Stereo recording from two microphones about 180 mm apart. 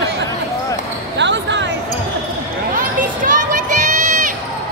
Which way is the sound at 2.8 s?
50° right (ahead or behind).